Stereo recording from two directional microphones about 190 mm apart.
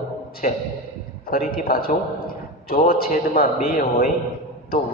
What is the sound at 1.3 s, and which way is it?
A man's voice, 50° left (ahead or behind).